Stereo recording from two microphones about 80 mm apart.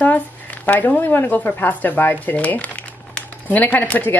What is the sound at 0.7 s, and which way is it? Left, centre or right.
A woman's voice, left.